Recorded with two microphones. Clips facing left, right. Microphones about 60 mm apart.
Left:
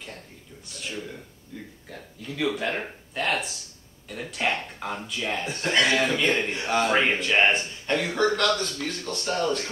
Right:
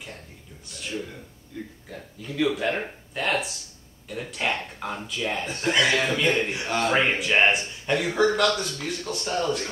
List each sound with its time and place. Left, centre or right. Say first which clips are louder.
2.3 s a man's voice: right 3 dB; centre
6.9 s a man's voice: even; centre